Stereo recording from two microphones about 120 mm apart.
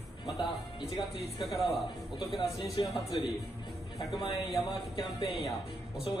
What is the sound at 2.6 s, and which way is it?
Speech, 40° left (ahead or behind).